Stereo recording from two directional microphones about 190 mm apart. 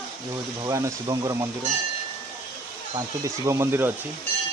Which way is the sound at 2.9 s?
15° right (ahead or behind).